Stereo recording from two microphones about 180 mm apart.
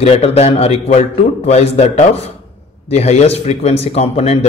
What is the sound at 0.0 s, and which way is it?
A man's voice, 35° left (ahead or behind).